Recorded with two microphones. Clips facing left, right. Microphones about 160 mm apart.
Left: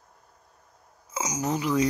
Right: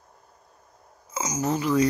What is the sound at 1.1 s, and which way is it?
Speech, 15° left (ahead or behind).